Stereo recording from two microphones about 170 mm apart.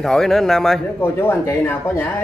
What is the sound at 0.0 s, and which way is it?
Speech, centre (ahead or behind).